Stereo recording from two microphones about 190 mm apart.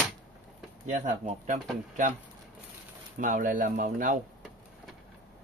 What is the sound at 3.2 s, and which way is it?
Speech, 45° right (ahead or behind).